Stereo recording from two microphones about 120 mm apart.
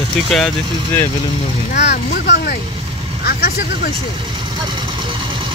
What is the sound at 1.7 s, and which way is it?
Speech, 85° left.